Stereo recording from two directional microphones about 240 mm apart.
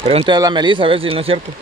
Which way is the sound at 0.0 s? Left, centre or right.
Right.